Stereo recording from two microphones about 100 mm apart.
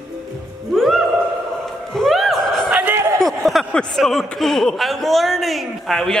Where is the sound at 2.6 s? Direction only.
15° right (ahead or behind).